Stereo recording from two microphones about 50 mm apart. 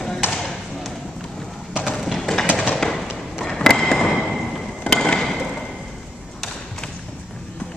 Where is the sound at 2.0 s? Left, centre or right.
Centre.